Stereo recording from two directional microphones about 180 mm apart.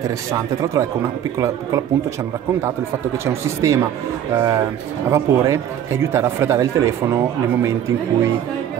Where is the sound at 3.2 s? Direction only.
15° right (ahead or behind).